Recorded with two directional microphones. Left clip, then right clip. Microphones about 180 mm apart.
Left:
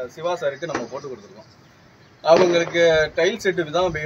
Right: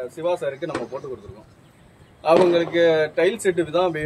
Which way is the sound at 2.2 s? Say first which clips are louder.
Left 1 dB; 15° right (ahead or behind).